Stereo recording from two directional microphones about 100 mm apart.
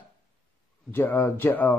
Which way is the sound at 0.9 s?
20° left (ahead or behind).